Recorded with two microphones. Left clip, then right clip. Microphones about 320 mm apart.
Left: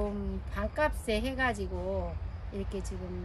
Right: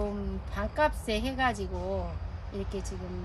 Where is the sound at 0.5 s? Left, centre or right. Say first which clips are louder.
Right 3 dB; centre.